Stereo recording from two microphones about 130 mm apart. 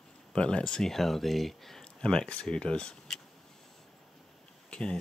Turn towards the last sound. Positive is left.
turn(degrees=5)  # may be behind; listen again after turning